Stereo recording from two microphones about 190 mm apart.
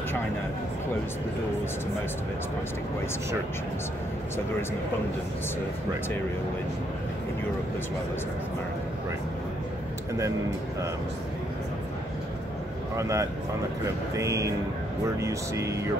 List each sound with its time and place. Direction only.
12.9 s speech: 15° right (ahead or behind)